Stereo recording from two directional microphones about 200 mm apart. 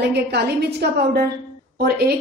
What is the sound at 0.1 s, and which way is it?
A woman's voice, 55° right (ahead or behind).